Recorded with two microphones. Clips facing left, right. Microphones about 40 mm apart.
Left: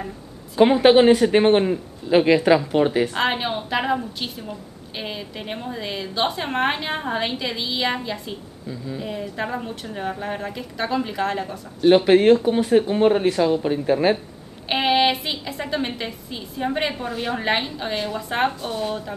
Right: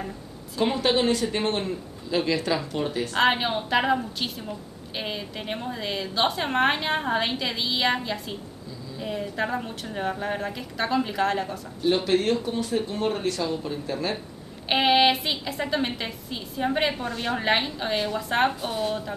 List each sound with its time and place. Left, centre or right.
0.6 s speech: left
3.2 s a woman's voice: centre
12.0 s speech: left
14.7 s a woman's voice: centre